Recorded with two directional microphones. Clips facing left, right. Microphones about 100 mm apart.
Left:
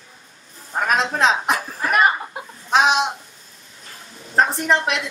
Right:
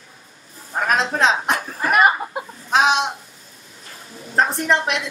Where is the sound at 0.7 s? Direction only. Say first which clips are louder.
Even; centre (ahead or behind).